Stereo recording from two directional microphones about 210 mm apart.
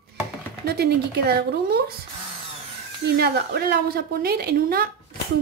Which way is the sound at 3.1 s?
50° right (ahead or behind).